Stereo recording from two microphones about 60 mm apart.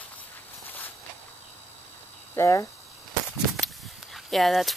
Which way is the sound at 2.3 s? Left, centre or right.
Left.